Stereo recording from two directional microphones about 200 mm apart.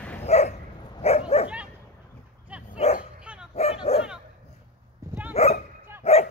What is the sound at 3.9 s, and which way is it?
Bow-wow, 30° left (ahead or behind).